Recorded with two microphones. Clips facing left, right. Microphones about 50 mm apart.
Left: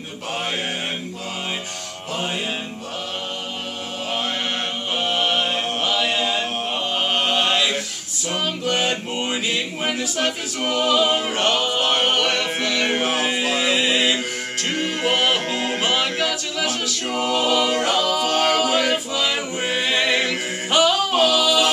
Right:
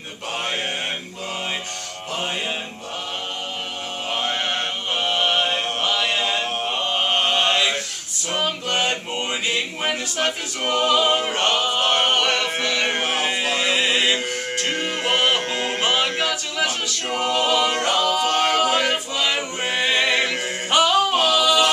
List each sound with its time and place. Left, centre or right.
4.1 s chant: centre
4.9 s mantra: centre
8.3 s music: centre